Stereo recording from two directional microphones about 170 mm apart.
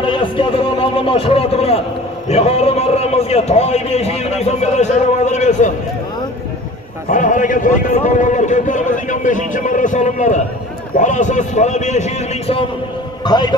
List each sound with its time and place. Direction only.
0.0 s a man's voice: 30° left (ahead or behind)
7.1 s a man's voice: 50° left (ahead or behind)
13.2 s a man's voice: 25° left (ahead or behind)